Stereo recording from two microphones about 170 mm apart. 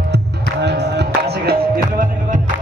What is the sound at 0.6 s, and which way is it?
Music, 80° right.